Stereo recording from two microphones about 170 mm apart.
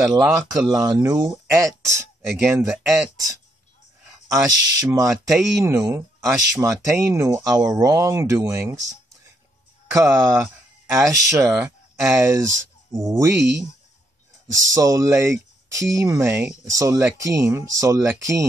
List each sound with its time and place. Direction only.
0.0 s speech: 20° right (ahead or behind)
2.7 s speech: centre (ahead or behind)
4.3 s speech: 20° right (ahead or behind)
5.1 s speech: centre (ahead or behind)
5.9 s speech: 20° right (ahead or behind)
9.8 s speech: 15° right (ahead or behind)
13.4 s speech: 90° right
14.6 s speech: 20° right (ahead or behind)